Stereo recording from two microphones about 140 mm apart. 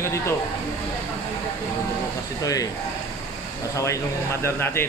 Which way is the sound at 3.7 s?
20° left (ahead or behind).